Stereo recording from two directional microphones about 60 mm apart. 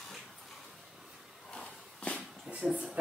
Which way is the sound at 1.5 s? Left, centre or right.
Centre.